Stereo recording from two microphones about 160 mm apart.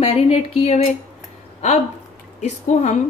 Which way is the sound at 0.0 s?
40° left (ahead or behind).